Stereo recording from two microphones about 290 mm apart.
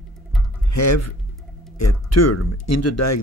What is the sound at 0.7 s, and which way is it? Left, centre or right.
Speech, left.